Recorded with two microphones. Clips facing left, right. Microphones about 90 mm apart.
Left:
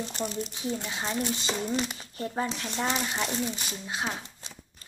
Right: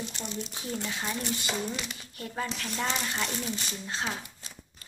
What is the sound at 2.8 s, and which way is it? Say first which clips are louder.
Speech: left 2 dB; 15° left (ahead or behind).